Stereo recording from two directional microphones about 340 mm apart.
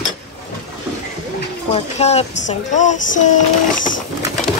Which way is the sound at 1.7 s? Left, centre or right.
Centre.